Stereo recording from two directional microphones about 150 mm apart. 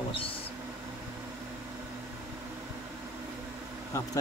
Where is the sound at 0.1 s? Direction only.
40° left (ahead or behind).